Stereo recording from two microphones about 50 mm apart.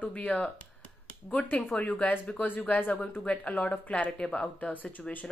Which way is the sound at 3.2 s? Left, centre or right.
Left.